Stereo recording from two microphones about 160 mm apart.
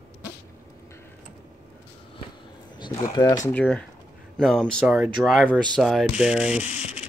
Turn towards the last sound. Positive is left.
turn(degrees=-5)  # may be behind; listen again after turning